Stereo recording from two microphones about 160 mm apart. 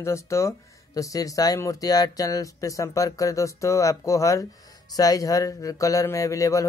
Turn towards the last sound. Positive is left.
turn(degrees=20)  # may be behind; listen again after turning